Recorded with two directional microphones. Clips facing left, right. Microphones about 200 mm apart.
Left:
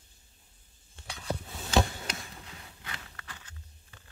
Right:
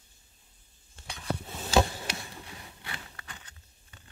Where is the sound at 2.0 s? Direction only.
30° right (ahead or behind).